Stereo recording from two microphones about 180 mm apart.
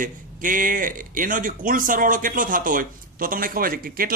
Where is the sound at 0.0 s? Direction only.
50° right (ahead or behind).